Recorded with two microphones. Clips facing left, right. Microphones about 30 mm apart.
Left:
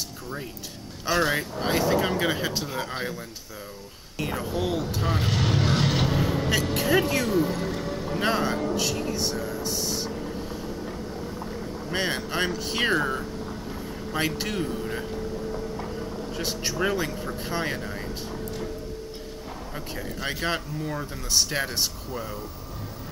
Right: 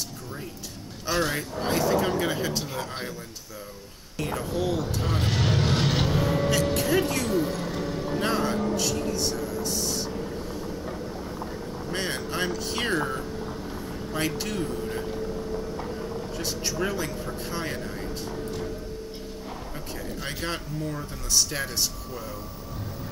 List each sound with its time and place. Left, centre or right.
1.0 s speech: centre
4.2 s speech: centre
4.5 s vehicle: centre
6.5 s speech: centre
8.2 s speech: centre
11.9 s speech: centre
16.3 s speech: centre
19.7 s speech: centre